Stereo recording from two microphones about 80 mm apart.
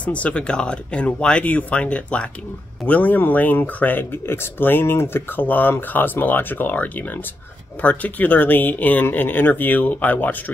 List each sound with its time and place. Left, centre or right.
0.0 s speech: centre